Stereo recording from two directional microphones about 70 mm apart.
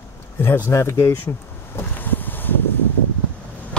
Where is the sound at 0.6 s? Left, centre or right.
Left.